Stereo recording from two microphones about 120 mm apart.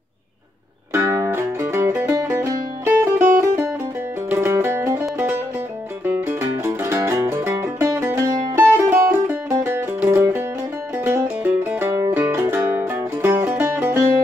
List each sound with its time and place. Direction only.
0.9 s music: 25° right (ahead or behind)
6.0 s music: 15° right (ahead or behind)